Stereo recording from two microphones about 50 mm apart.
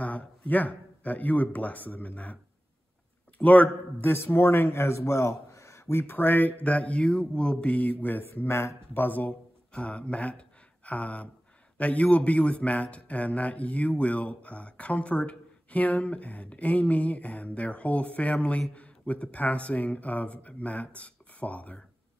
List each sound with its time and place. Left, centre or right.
0.0 s a sound: left
0.5 s speech: left
3.3 s speech: left
4.0 s a man's voice: left
6.0 s speech: left
6.6 s a man's voice: left
7.7 s speech: left
9.0 s speech: left
9.7 s a man's voice: left